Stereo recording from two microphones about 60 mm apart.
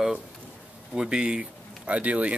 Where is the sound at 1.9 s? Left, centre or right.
Right.